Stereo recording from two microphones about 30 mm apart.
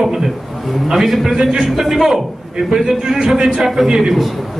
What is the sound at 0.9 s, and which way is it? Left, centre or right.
A man's voice, centre.